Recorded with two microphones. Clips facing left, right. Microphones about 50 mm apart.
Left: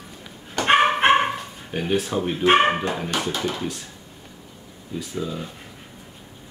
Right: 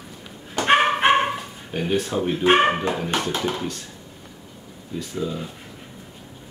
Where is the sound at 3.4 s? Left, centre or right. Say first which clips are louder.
Right 1 dB; centre.